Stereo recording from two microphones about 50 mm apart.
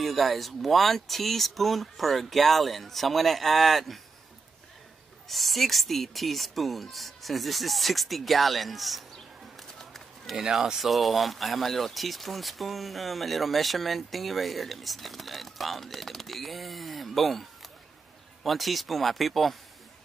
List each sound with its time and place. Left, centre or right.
0.0 s speech: centre
5.3 s speech: centre
9.6 s bird: centre
10.3 s speech: centre